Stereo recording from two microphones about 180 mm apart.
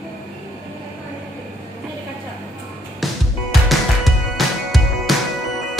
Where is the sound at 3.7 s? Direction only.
Centre (ahead or behind).